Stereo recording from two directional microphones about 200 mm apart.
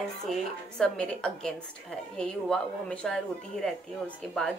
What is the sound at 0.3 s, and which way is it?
A woman's voice, 5° left (ahead or behind).